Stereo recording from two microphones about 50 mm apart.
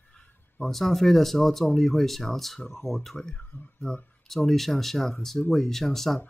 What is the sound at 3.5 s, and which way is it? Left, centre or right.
Speech, left.